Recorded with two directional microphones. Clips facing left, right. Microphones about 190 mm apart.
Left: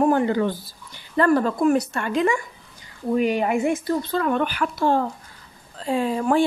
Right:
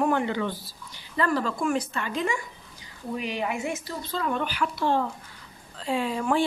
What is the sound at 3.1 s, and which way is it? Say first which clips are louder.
Speech: left 9 dB; 50° left (ahead or behind).